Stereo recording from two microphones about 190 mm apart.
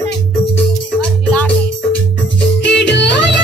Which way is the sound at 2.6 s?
65° left (ahead or behind).